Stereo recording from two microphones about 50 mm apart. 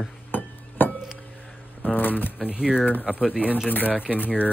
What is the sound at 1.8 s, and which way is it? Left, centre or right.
Shuffling cards, left.